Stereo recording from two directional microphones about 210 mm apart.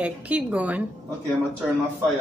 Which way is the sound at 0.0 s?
5° right (ahead or behind).